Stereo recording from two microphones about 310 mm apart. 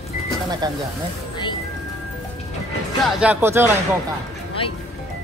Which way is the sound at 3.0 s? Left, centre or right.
Centre.